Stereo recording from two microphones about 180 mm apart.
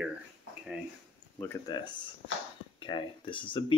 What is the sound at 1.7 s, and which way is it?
Speech, 25° left (ahead or behind).